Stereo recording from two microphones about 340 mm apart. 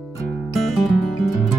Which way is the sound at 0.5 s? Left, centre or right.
Centre.